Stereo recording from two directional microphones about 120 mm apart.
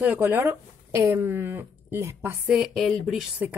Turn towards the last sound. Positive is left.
turn(degrees=-15)  # may be behind; listen again after turning